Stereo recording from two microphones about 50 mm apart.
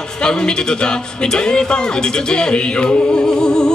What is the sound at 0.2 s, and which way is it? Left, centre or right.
A woman's voice, centre.